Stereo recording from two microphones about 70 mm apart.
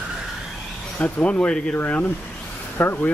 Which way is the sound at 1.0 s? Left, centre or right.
Left.